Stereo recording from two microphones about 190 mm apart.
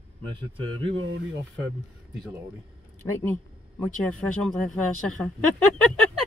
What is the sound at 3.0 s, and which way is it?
Speech, 10° left (ahead or behind).